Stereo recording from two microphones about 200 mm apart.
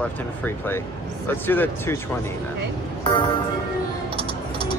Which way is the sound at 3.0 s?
25° left (ahead or behind).